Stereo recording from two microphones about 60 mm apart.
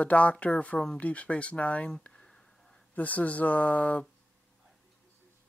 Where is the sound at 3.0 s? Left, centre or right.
Left.